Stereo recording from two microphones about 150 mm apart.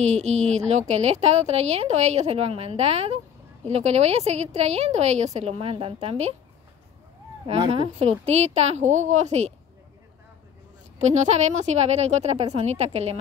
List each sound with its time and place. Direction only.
0.0 s a woman's voice: 45° right (ahead or behind)
7.4 s a woman's voice: 40° right (ahead or behind)
11.0 s a woman's voice: 50° right (ahead or behind)